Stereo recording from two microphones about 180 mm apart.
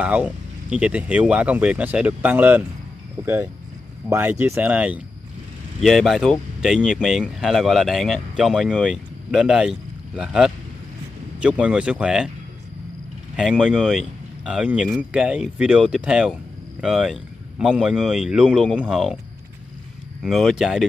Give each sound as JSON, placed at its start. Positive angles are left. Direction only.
{"t": 0.0, "sound": "speech", "side_deg": -5}
{"t": 13.4, "sound": "speech", "side_deg": -5}
{"t": 20.2, "sound": "speech", "side_deg": 0}